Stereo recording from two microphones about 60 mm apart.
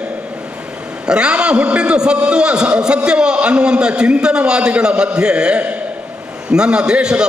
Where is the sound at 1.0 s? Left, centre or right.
Centre.